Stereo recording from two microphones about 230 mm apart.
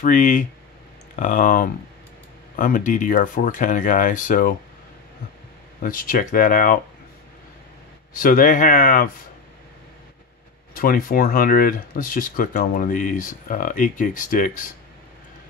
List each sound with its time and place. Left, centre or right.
0.0 s speech: left
5.8 s speech: left
8.2 s speech: left
10.7 s speech: left